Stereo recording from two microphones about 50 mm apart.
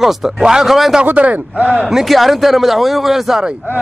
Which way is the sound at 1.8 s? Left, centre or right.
Centre.